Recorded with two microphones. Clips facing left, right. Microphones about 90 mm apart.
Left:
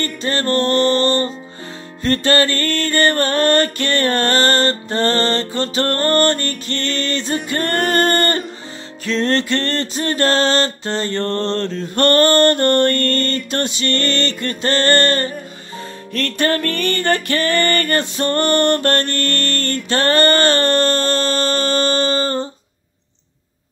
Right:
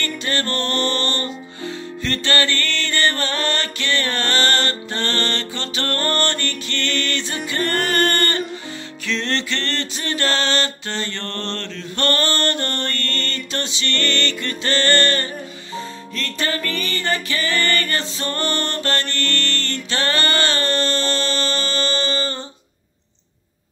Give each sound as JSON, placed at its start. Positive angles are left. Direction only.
{"t": 0.0, "sound": "music", "side_deg": 35}
{"t": 16.1, "sound": "music", "side_deg": 55}